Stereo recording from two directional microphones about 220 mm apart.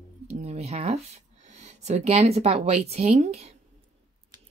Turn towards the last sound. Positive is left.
turn(degrees=-30)  # may be behind; listen again after turning